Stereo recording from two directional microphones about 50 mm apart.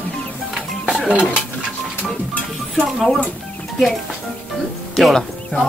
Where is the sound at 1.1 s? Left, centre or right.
Right.